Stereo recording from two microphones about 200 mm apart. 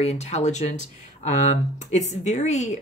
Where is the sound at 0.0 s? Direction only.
35° left (ahead or behind).